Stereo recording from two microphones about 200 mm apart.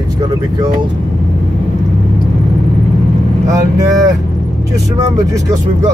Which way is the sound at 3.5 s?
15° right (ahead or behind).